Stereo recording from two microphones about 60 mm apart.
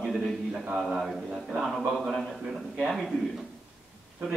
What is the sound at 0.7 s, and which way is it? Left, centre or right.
A man's voice, centre.